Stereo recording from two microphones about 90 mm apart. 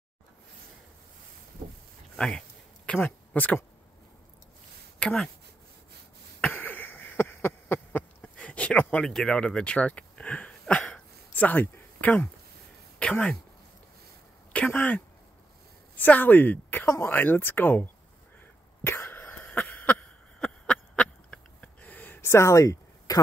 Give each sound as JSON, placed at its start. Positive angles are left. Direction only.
{"t": 2.1, "sound": "speech", "side_deg": 10}
{"t": 4.9, "sound": "speech", "side_deg": 10}
{"t": 6.5, "sound": "a sound", "side_deg": 20}
{"t": 13.1, "sound": "speech", "side_deg": 15}
{"t": 14.5, "sound": "speech", "side_deg": 20}
{"t": 18.9, "sound": "cough", "side_deg": 25}
{"t": 19.3, "sound": "a sound", "side_deg": 20}